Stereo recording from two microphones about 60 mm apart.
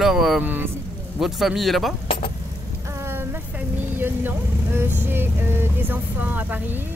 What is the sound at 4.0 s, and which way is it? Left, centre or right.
Vehicle, right.